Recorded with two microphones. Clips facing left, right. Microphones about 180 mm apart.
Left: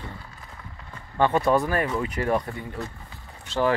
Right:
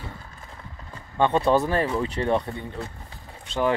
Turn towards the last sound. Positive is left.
turn(degrees=-20)  # may be behind; listen again after turning